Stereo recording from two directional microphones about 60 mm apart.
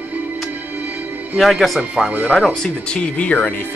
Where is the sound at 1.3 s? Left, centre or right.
Centre.